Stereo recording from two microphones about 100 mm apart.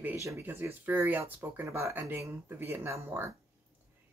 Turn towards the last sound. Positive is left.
turn(degrees=-25)  # may be behind; listen again after turning